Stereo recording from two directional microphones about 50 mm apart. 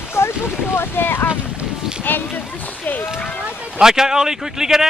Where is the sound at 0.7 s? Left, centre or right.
Left.